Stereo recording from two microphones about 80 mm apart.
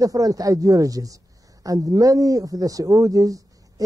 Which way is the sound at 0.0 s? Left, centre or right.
Right.